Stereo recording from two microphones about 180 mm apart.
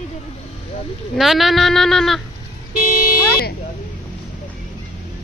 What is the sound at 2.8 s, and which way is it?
Vehicle, 50° left (ahead or behind).